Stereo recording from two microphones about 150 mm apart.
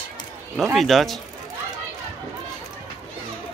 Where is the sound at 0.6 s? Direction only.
Centre (ahead or behind).